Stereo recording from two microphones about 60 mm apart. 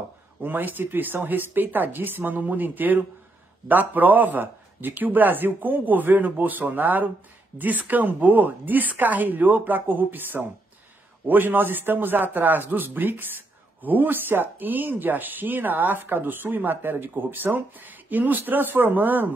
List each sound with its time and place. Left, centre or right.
0.4 s speech: right